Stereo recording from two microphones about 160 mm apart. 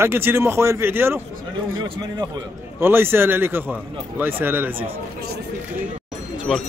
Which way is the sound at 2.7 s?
15° right (ahead or behind).